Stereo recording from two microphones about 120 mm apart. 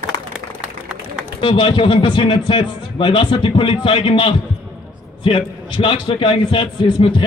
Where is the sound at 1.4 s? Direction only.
45° left (ahead or behind).